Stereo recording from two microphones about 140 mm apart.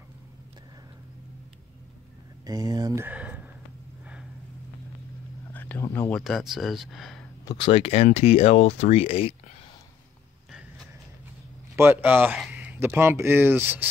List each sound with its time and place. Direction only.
2.4 s speech: 30° right (ahead or behind); by 3.4 s 10° right (ahead or behind)
5.5 s speech: 15° left (ahead or behind)
6.2 s speech: centre (ahead or behind)
7.4 s speech: 40° left (ahead or behind)
11.7 s speech: 15° right (ahead or behind)